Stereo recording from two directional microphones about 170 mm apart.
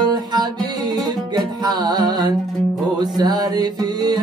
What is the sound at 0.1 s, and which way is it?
Music, 25° right (ahead or behind).